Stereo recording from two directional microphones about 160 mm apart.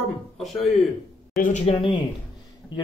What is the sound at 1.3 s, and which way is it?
Speech, 55° left (ahead or behind).